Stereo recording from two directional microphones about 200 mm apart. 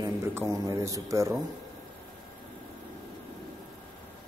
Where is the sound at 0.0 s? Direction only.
15° right (ahead or behind).